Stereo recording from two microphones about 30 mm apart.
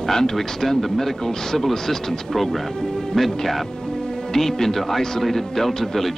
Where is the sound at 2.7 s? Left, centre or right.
Centre.